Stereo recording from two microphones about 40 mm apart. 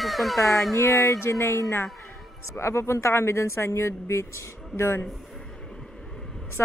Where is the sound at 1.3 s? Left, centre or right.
Left.